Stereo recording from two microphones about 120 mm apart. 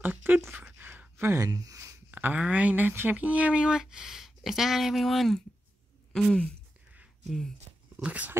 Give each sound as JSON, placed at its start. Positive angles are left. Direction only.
{"t": 0.0, "sound": "a sound", "side_deg": -15}
{"t": 2.0, "sound": "speech", "side_deg": -15}
{"t": 6.1, "sound": "gasp", "side_deg": 5}
{"t": 7.2, "sound": "speech", "side_deg": 5}
{"t": 7.9, "sound": "speech", "side_deg": -10}